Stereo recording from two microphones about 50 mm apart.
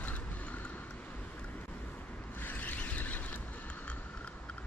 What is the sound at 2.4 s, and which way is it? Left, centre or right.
Vehicle, left.